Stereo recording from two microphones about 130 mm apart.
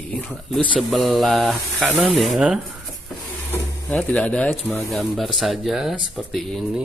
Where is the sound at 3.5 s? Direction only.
10° left (ahead or behind).